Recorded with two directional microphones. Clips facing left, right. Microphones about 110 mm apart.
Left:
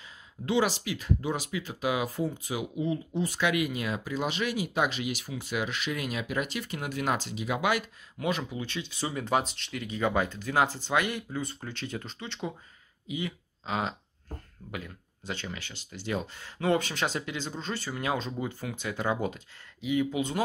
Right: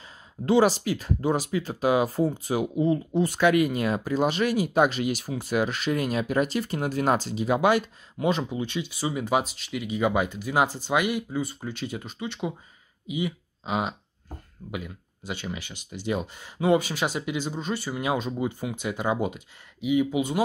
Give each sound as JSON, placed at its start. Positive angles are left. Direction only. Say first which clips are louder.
{"t": 0.0, "sound": "speech", "louder": "right 6 dB", "side_deg": -40}